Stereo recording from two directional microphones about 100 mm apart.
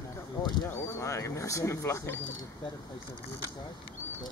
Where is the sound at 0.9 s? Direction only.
30° left (ahead or behind).